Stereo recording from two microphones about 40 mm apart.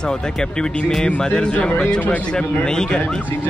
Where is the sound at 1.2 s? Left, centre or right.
Left.